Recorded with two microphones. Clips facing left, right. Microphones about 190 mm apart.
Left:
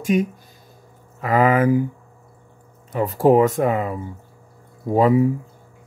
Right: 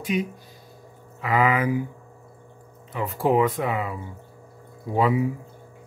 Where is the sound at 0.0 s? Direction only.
45° left (ahead or behind).